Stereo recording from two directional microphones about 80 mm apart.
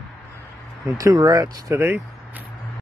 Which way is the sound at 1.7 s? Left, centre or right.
Right.